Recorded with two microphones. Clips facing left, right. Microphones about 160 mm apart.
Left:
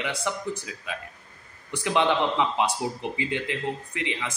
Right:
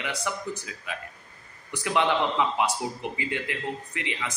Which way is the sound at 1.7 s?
20° left (ahead or behind).